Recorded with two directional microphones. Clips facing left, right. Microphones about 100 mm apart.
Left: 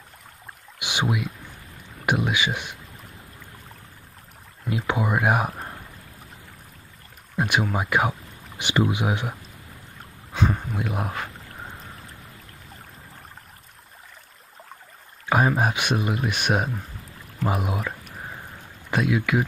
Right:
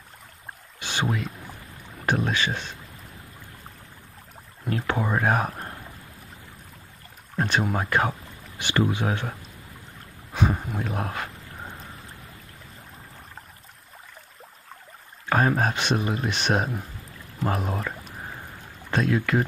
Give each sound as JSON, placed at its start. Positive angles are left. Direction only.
{"t": 0.7, "sound": "speech", "side_deg": 15}
{"t": 4.6, "sound": "speech", "side_deg": 15}
{"t": 7.3, "sound": "a sound", "side_deg": 10}
{"t": 7.7, "sound": "speech", "side_deg": 10}
{"t": 8.5, "sound": "speech", "side_deg": 15}
{"t": 10.3, "sound": "speech", "side_deg": -5}
{"t": 15.2, "sound": "speech", "side_deg": 10}